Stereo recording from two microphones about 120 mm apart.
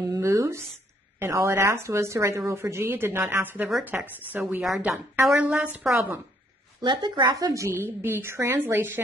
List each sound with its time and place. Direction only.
0.0 s a woman's voice: 30° right (ahead or behind); by 5.0 s 5° right (ahead or behind)
5.1 s a woman's voice: 20° right (ahead or behind)
6.8 s speech: 40° right (ahead or behind)
7.2 s a woman's voice: 25° right (ahead or behind)